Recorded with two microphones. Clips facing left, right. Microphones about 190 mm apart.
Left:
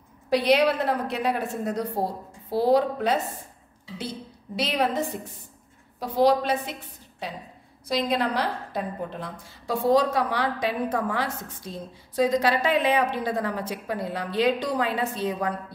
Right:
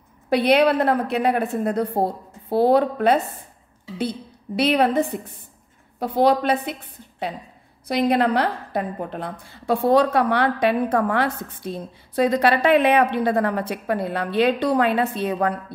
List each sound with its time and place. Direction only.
0.3 s a woman's voice: 60° right (ahead or behind)
4.6 s a woman's voice: 60° right (ahead or behind)